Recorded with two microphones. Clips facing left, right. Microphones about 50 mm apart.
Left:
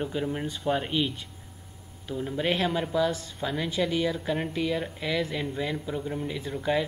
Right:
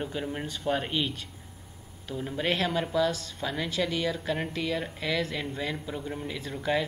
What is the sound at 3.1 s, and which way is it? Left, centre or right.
Speech, left.